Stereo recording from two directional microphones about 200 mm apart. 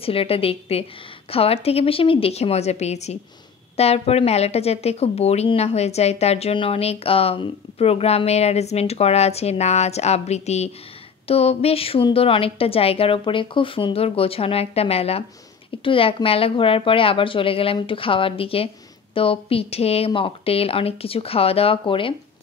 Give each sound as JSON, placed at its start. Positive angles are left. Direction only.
{"t": 0.0, "sound": "a woman's voice", "side_deg": 30}